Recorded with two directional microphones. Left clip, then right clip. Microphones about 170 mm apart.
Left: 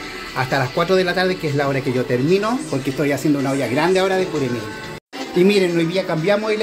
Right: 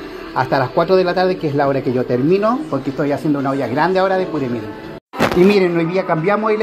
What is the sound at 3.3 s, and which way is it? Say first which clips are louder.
Speech: right 1 dB; 15° left (ahead or behind).